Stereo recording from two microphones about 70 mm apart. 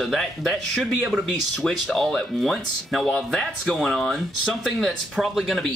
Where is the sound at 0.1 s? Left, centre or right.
Centre.